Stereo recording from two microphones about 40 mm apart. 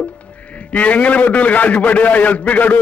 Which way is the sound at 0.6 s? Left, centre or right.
Left.